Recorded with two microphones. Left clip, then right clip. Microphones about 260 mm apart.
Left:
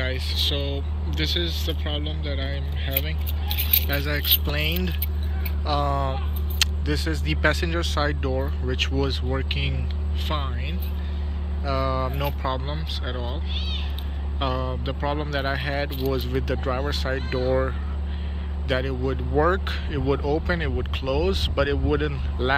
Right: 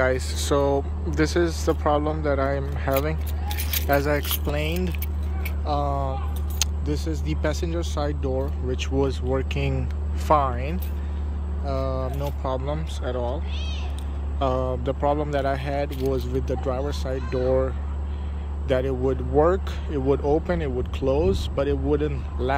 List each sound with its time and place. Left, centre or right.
0.0 s speech: right
2.0 s a man's voice: right
3.4 s speech: centre